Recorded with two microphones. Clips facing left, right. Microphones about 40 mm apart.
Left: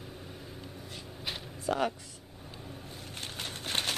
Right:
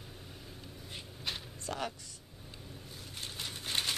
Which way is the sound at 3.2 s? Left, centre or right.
Left.